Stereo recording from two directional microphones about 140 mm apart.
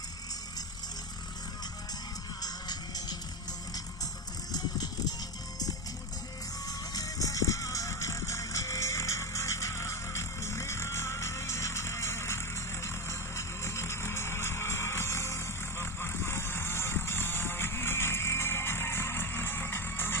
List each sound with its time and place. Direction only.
2.4 s music: 30° left (ahead or behind)
4.5 s music: 25° left (ahead or behind)
6.9 s music: 25° left (ahead or behind)